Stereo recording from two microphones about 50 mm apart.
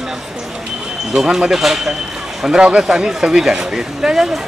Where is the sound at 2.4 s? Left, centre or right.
Centre.